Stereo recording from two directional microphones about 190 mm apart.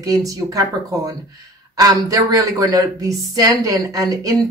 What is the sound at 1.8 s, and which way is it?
A woman's voice, 20° right (ahead or behind).